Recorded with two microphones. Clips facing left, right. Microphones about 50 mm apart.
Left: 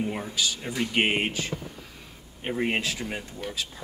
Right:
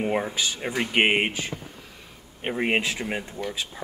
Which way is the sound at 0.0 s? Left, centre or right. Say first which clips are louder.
Right 4 dB; right.